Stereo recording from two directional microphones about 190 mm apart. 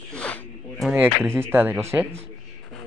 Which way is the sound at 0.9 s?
10° right (ahead or behind).